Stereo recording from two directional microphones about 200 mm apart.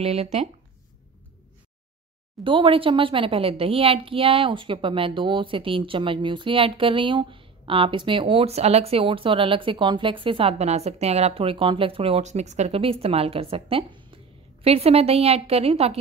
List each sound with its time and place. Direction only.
0.0 s speech: 30° right (ahead or behind)
2.4 s a woman's voice: 25° right (ahead or behind)